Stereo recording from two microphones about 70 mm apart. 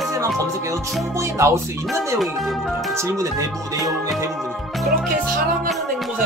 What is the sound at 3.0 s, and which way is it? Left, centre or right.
Speech, right.